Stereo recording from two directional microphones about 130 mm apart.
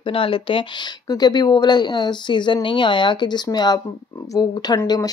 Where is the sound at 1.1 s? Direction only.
30° left (ahead or behind).